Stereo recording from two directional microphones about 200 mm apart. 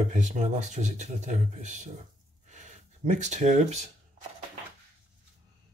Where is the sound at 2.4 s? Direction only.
35° right (ahead or behind).